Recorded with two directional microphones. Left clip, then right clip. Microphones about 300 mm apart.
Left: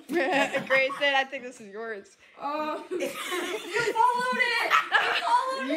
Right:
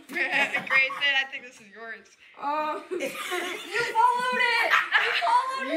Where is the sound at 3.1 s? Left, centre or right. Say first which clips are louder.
Even; centre.